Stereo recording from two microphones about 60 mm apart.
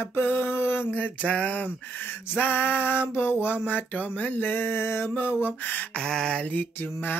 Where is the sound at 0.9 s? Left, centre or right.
Centre.